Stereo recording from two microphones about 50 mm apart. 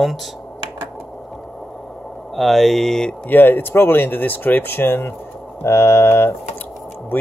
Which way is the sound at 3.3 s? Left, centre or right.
Left.